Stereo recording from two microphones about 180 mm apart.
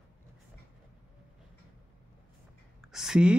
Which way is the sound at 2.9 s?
5° right (ahead or behind).